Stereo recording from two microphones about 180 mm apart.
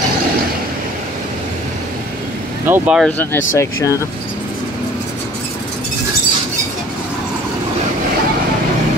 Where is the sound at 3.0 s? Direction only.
10° left (ahead or behind).